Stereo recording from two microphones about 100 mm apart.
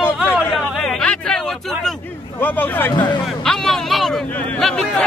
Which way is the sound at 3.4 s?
5° left (ahead or behind).